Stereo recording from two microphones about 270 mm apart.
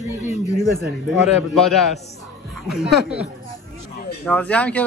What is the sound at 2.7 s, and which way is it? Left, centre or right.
Speech, centre.